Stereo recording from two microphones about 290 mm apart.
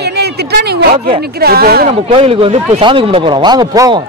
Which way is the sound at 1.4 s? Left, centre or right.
Right.